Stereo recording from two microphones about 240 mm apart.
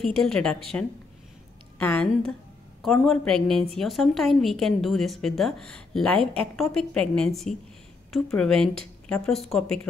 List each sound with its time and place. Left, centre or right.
0.0 s a woman's voice: centre